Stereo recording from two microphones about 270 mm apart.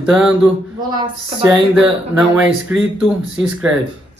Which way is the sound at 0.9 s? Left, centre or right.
Centre.